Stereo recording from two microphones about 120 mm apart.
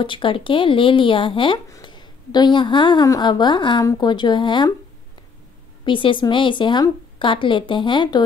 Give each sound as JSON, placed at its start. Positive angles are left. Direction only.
{"t": 0.0, "sound": "a woman's voice", "side_deg": 45}
{"t": 5.9, "sound": "a woman's voice", "side_deg": 45}